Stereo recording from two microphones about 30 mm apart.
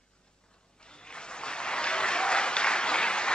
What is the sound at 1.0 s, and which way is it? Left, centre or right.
Applause, left.